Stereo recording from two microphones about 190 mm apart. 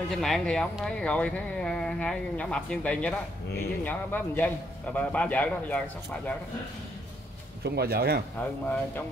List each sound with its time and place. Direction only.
0.1 s a man's voice: centre (ahead or behind)
7.6 s speech: 55° right (ahead or behind)
8.4 s a man's voice: 10° left (ahead or behind)